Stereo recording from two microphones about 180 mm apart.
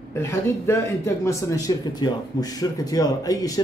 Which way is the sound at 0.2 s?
15° left (ahead or behind).